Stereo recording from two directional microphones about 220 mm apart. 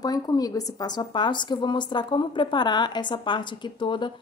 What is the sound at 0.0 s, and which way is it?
A woman's voice, 15° left (ahead or behind).